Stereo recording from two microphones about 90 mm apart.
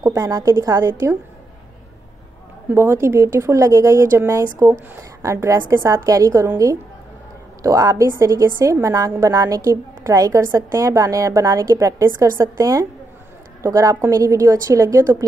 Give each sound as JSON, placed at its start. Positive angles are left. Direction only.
{"t": 0.0, "sound": "a woman's voice", "side_deg": -30}
{"t": 2.7, "sound": "a woman's voice", "side_deg": -30}